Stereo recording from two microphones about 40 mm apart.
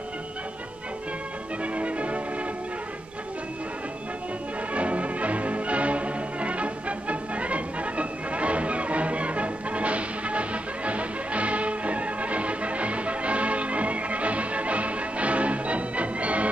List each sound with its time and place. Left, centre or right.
1.6 s music: right
4.7 s music: right